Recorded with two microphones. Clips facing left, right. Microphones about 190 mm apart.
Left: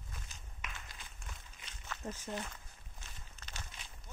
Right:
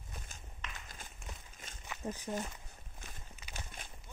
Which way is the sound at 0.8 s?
45° right (ahead or behind).